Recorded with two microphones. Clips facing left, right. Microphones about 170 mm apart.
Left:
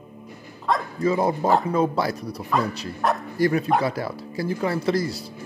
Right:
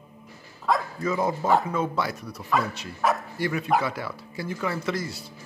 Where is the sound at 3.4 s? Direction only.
40° left (ahead or behind).